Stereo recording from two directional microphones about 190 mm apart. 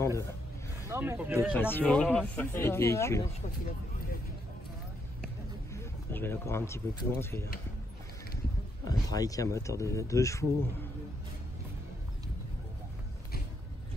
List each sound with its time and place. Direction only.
0.8 s speech: 10° right (ahead or behind)
1.6 s speech: 10° left (ahead or behind)
5.7 s speech: 15° left (ahead or behind)
8.8 s speech: 20° left (ahead or behind)